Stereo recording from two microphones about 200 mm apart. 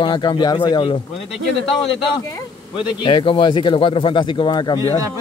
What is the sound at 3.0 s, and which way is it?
Speech, 25° left (ahead or behind).